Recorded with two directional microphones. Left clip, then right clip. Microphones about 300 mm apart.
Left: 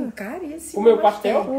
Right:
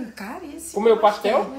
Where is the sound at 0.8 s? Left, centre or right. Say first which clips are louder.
Left 1 dB; right.